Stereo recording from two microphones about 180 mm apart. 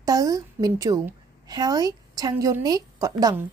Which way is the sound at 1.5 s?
20° right (ahead or behind).